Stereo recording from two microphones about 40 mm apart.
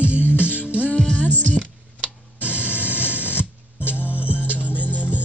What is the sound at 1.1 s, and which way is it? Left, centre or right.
Music, left.